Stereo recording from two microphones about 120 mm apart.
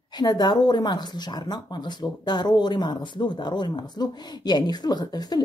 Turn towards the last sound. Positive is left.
turn(degrees=35)  # may be behind; listen again after turning